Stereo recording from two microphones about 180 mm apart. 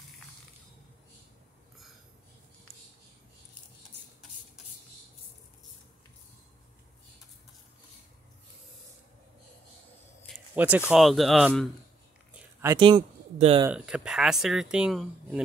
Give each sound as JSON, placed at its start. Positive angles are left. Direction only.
{"t": 10.5, "sound": "speech", "side_deg": -10}
{"t": 12.6, "sound": "speech", "side_deg": -25}
{"t": 13.7, "sound": "speech", "side_deg": -5}